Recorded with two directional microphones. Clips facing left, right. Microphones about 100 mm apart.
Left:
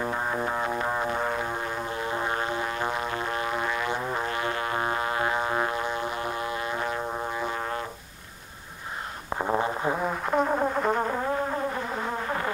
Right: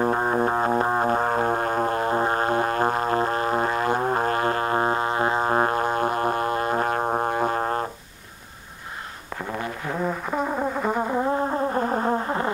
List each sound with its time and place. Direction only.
0.0 s music: 40° right (ahead or behind)
9.4 s a sound: 25° left (ahead or behind)
10.2 s music: centre (ahead or behind)
11.7 s music: 40° right (ahead or behind)